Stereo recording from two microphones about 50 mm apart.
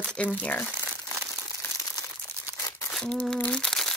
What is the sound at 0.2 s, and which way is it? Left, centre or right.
Speech, left.